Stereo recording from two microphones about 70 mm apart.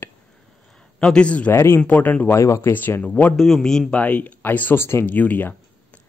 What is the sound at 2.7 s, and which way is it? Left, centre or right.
Speech, left.